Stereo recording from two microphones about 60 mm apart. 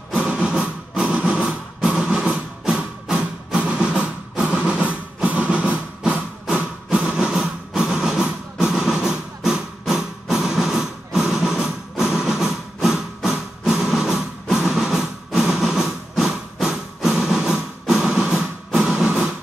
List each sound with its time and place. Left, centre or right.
0.1 s vehicle: centre